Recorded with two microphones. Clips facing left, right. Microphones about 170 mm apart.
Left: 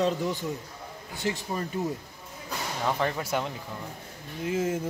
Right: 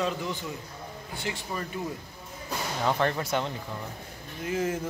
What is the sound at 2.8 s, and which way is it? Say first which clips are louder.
Speech: right 2 dB; 5° left (ahead or behind).